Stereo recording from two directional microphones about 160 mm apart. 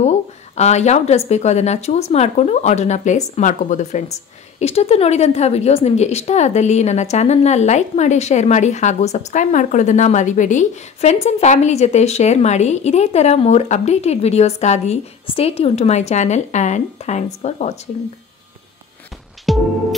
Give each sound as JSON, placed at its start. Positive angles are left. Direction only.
{"t": 0.0, "sound": "a sound", "side_deg": 45}
{"t": 1.3, "sound": "speech", "side_deg": 45}
{"t": 19.5, "sound": "music", "side_deg": 0}